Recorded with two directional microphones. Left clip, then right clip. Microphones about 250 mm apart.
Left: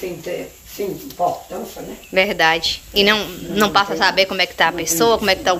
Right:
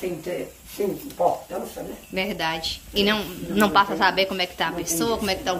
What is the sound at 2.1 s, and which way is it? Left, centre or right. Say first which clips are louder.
A woman's voice: left 11 dB; centre.